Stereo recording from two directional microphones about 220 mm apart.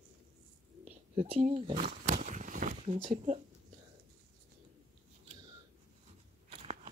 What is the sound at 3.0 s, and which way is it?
Speech, 30° right (ahead or behind).